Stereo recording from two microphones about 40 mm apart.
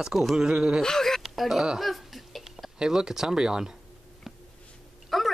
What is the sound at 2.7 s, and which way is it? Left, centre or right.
Speech, centre.